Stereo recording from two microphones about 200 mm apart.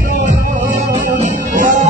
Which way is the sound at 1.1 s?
40° right (ahead or behind).